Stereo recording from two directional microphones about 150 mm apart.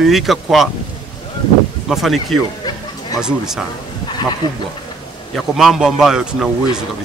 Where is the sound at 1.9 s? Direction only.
Centre (ahead or behind).